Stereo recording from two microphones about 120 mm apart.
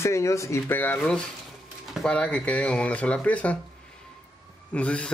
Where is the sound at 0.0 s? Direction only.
25° left (ahead or behind).